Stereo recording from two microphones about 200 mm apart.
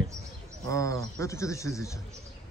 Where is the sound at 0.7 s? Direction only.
15° left (ahead or behind).